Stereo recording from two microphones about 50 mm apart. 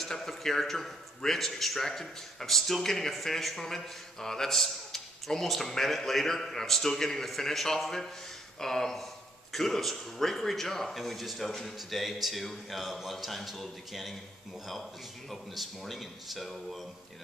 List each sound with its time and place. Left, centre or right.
0.0 s a man's voice: centre